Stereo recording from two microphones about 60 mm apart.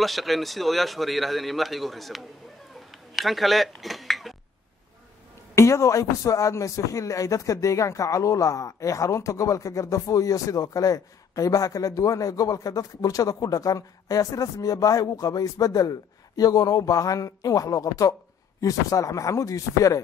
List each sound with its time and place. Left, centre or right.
0.0 s a man's voice: centre
5.5 s a man's voice: left